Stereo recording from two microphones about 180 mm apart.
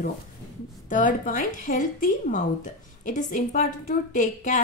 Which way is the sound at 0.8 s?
45° left (ahead or behind).